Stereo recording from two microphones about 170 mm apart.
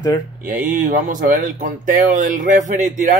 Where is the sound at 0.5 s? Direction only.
50° right (ahead or behind).